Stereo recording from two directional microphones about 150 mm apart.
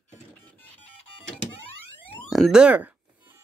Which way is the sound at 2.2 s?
Centre (ahead or behind).